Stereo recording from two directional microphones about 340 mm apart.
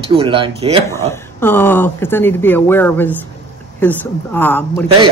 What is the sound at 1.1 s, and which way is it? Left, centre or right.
Speech, centre.